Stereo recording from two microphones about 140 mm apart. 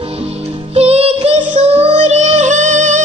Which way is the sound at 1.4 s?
55° right (ahead or behind).